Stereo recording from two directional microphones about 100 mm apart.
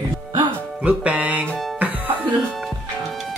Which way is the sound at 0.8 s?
15° right (ahead or behind).